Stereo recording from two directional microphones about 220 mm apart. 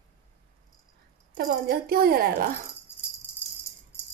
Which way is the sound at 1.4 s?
45° right (ahead or behind).